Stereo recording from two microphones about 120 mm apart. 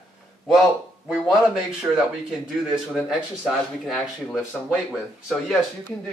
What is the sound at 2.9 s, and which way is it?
Speech, 5° right (ahead or behind).